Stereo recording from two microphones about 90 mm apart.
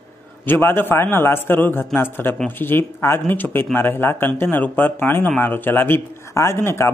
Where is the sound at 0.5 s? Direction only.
25° left (ahead or behind).